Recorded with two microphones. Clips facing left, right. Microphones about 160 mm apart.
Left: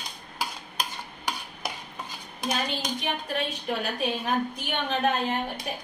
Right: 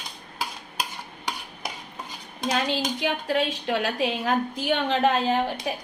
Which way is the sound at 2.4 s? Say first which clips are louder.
Right 4 dB; 90° right.